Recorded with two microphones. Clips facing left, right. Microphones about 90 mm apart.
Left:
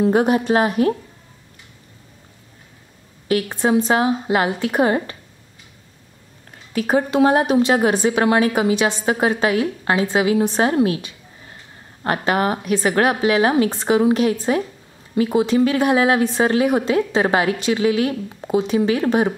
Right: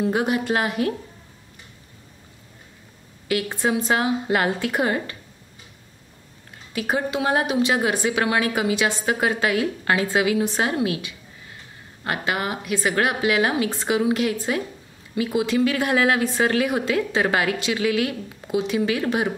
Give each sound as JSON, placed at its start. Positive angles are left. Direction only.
{"t": 0.0, "sound": "a woman's voice", "side_deg": 35}
{"t": 3.4, "sound": "a woman's voice", "side_deg": 25}
{"t": 6.7, "sound": "a woman's voice", "side_deg": 35}